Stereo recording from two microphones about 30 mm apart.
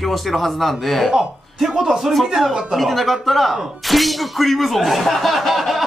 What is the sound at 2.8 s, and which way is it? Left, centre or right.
Speech, centre.